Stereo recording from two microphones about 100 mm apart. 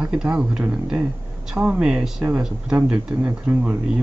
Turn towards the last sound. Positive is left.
turn(degrees=-15)  # may be behind; listen again after turning